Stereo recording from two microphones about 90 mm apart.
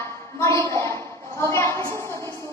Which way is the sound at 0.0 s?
35° left (ahead or behind).